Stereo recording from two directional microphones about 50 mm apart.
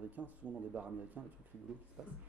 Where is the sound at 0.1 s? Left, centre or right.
Right.